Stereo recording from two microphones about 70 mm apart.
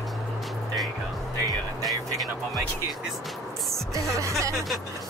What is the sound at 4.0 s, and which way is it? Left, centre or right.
Speech, right.